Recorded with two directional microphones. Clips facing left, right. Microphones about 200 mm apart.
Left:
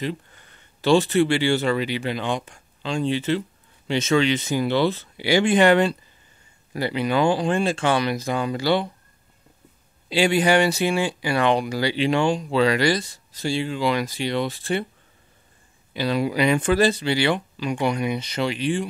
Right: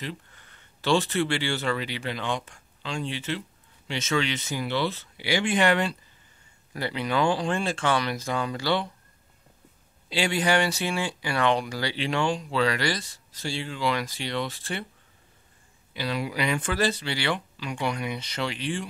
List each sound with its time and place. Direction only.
0.7 s speech: 15° left (ahead or behind); by 4.2 s 35° left (ahead or behind)
4.2 s speech: 15° left (ahead or behind)
4.6 s speech: 30° left (ahead or behind)
6.7 s speech: 10° left (ahead or behind)
10.0 s speech: 10° left (ahead or behind)
15.9 s speech: 30° left (ahead or behind); by 18.9 s 15° left (ahead or behind)